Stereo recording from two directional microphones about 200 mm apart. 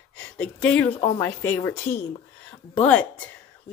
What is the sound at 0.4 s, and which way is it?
Speech, 5° left (ahead or behind).